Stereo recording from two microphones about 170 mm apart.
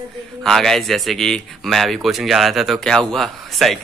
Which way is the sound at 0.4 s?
Centre (ahead or behind).